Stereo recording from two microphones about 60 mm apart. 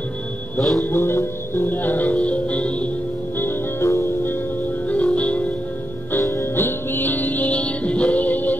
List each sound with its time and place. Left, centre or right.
0.6 s music: centre
0.8 s music: left
3.3 s music: left
4.8 s music: left
6.2 s music: left
6.5 s music: left